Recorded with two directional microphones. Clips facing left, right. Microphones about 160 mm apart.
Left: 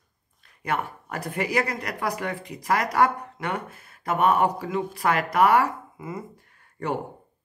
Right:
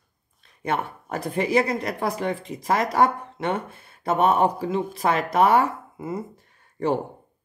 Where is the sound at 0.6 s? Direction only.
25° right (ahead or behind).